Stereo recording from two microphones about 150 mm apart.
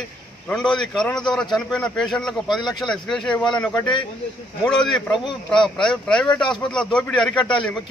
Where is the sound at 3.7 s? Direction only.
30° left (ahead or behind).